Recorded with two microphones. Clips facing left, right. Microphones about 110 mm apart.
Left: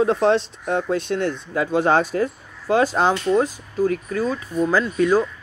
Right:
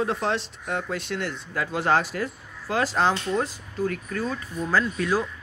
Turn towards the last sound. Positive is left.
turn(degrees=5)  # may be behind; listen again after turning